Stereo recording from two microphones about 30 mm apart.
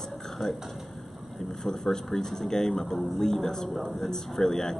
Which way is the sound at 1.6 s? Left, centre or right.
Centre.